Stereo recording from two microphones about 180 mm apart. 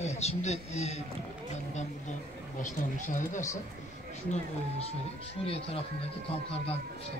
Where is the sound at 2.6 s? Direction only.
45° left (ahead or behind).